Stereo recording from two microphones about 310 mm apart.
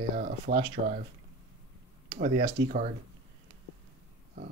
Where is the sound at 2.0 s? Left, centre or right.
Right.